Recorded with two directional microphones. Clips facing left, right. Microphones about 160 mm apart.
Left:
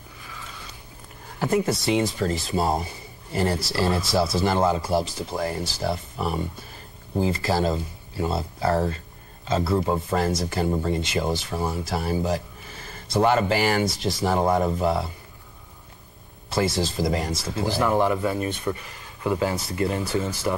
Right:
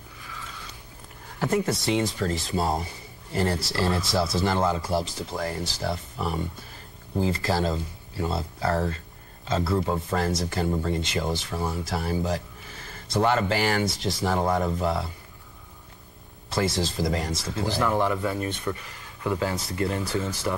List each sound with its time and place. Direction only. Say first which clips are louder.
1.4 s speech: left 2 dB; 15° left (ahead or behind)
16.7 s speech: left 2 dB; 10° left (ahead or behind)